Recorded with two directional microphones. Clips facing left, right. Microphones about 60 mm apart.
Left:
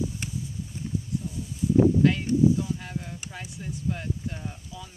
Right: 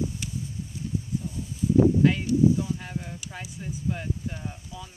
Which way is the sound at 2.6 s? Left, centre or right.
Centre.